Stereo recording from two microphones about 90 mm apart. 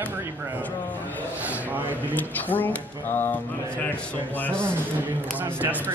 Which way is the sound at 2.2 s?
20° left (ahead or behind).